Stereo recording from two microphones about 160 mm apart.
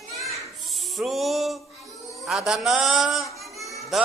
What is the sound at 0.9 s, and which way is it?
A man's voice, centre (ahead or behind).